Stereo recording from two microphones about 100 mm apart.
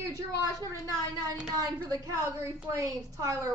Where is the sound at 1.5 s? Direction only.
40° right (ahead or behind).